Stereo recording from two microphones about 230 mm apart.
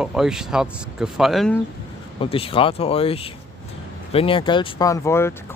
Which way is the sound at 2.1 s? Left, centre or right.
Left.